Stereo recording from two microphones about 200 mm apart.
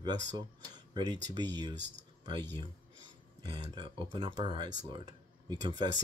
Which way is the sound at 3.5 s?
25° right (ahead or behind).